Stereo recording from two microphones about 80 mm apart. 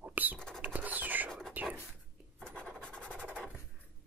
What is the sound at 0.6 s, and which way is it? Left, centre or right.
Rodents, right.